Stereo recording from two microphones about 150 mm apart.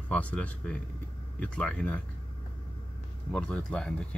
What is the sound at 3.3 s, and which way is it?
Speech, 10° left (ahead or behind).